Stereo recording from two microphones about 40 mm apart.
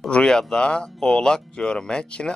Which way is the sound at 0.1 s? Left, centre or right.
Left.